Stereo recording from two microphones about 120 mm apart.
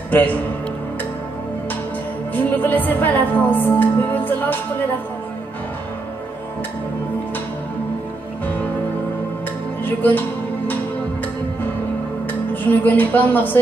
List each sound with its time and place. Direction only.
0.1 s speech: 15° left (ahead or behind)
2.3 s speech: 15° left (ahead or behind)
9.8 s speech: 15° left (ahead or behind)
12.8 s speech: 15° left (ahead or behind)